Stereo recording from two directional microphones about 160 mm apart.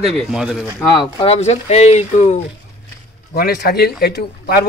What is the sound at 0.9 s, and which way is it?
Speech, 30° left (ahead or behind).